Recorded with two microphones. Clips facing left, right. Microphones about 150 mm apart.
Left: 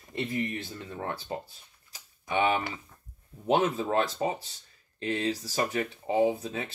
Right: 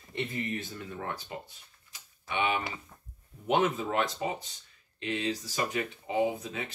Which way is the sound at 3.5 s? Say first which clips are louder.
Left 2 dB; 30° left (ahead or behind).